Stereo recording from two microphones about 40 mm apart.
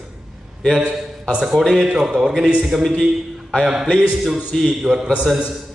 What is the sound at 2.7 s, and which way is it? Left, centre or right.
Speech, centre.